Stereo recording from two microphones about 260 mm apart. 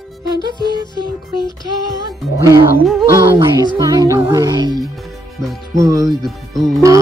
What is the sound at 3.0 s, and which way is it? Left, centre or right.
Music, centre.